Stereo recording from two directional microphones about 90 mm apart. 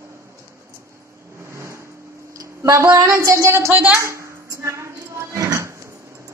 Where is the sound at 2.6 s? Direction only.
35° right (ahead or behind).